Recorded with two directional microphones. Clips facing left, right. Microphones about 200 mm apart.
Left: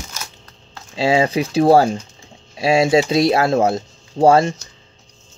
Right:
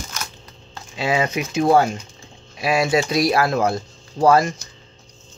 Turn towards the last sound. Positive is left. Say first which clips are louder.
# left 3 dB
turn(degrees=30)  # may be behind; listen again after turning